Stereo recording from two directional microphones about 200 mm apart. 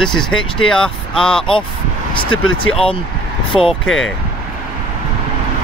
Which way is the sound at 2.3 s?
90° left.